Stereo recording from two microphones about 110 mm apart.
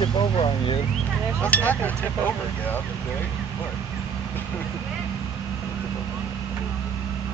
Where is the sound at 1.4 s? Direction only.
15° left (ahead or behind).